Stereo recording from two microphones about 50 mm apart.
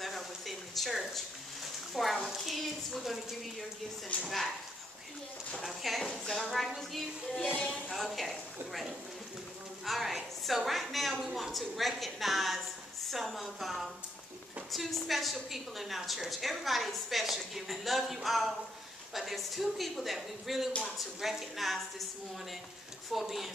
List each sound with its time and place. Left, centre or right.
0.0 s a sound: centre
2.2 s a woman's voice: centre
5.6 s a woman's voice: centre
7.5 s speech: centre
7.9 s a woman's voice: centre
9.8 s a woman's voice: centre
23.1 s a woman's voice: centre